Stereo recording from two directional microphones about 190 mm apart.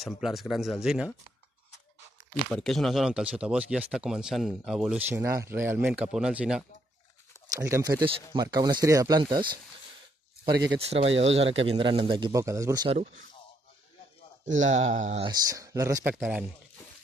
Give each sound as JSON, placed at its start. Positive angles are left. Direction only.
{"t": 0.0, "sound": "speech", "side_deg": 0}
{"t": 2.5, "sound": "speech", "side_deg": 0}
{"t": 7.5, "sound": "speech", "side_deg": -15}
{"t": 10.6, "sound": "speech", "side_deg": -25}
{"t": 14.4, "sound": "speech", "side_deg": -40}
{"t": 15.2, "sound": "speech", "side_deg": -20}